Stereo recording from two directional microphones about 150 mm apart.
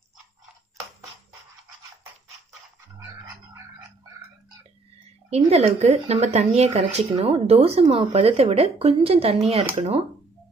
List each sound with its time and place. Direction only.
5.5 s speech: 45° right (ahead or behind)